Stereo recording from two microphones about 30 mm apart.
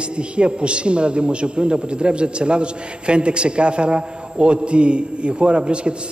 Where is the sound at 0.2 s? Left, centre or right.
Right.